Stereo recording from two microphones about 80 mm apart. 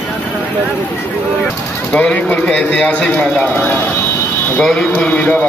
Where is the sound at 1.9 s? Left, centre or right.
Centre.